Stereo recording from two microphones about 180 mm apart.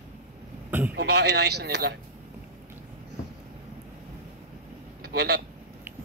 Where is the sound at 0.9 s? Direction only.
65° right (ahead or behind).